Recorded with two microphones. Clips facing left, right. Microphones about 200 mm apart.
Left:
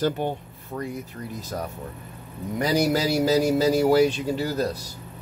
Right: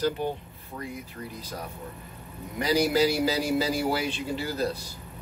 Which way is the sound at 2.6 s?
45° left (ahead or behind).